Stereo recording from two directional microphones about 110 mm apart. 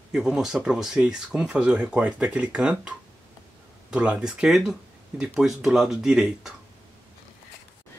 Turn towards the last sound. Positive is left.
turn(degrees=-5)  # may be behind; listen again after turning